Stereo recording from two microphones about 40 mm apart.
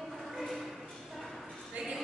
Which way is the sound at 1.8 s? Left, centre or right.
Right.